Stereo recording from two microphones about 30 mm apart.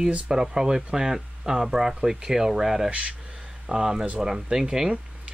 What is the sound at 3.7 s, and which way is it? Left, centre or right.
Speech, right.